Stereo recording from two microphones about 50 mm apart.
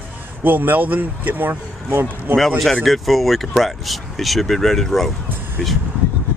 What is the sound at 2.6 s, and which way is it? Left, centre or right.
Speech, centre.